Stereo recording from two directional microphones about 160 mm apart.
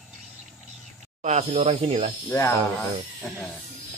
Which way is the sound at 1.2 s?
45° right (ahead or behind).